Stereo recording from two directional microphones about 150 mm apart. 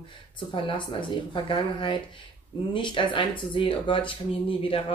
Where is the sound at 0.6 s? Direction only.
30° left (ahead or behind).